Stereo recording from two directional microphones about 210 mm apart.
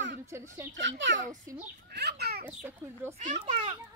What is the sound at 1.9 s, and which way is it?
Speech, 50° right (ahead or behind).